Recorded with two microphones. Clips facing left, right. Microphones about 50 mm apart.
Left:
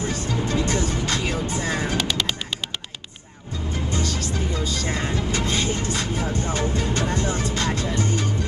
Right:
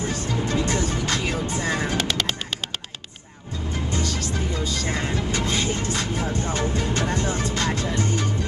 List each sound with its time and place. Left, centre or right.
0.7 s music: right
5.5 s vehicle: right
5.9 s music: right